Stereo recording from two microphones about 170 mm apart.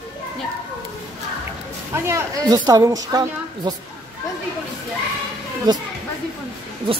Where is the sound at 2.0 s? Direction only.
20° right (ahead or behind).